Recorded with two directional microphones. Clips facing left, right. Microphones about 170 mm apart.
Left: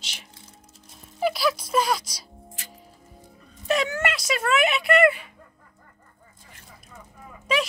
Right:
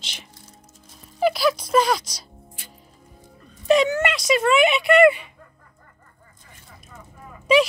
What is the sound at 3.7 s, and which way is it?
Speech, 5° left (ahead or behind).